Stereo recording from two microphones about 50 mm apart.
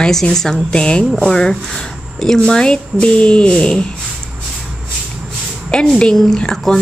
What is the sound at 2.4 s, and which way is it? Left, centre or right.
A woman's voice, centre.